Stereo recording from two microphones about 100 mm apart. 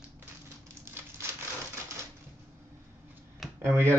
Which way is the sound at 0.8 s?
25° right (ahead or behind).